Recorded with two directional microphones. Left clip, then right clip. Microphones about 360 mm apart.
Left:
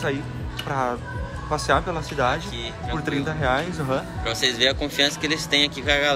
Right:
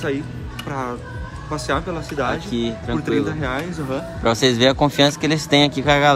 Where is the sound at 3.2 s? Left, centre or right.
Centre.